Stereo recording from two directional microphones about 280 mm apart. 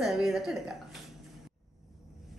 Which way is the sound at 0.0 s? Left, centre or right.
Centre.